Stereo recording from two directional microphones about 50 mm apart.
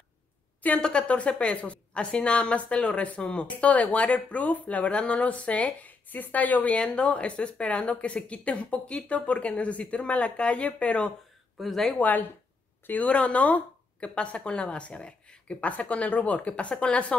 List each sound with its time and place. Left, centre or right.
0.7 s a woman's voice: centre
11.6 s speech: centre
12.0 s speech: left
13.1 s a woman's voice: left